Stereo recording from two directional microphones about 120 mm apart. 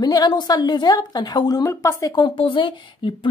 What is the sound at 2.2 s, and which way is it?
Speech, 45° left (ahead or behind).